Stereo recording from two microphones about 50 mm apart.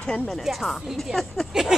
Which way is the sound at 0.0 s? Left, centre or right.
Centre.